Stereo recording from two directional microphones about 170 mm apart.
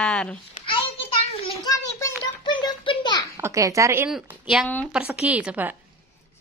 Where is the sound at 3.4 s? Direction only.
20° right (ahead or behind).